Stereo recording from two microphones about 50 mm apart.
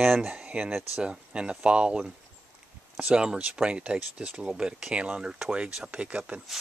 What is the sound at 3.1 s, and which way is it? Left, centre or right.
Speech, centre.